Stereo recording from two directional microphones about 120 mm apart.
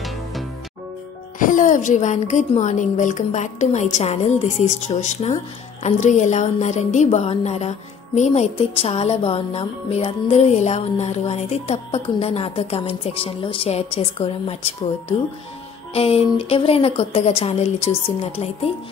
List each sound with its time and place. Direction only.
1.4 s a woman's voice: 90° left; by 8.5 s 70° left (ahead or behind)
8.5 s music: 55° left (ahead or behind)
15.9 s music: 55° left (ahead or behind)